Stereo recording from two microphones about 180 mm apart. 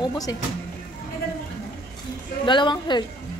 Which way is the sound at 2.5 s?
25° left (ahead or behind).